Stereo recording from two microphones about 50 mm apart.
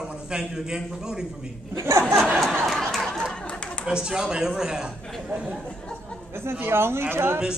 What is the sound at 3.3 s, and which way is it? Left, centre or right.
Chatter, left.